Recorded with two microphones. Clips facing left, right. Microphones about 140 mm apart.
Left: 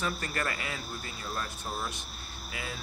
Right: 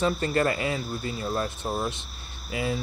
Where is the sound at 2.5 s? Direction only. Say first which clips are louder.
Right 12 dB; 25° right (ahead or behind).